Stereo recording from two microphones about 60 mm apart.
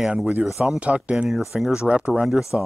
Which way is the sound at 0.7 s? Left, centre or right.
Right.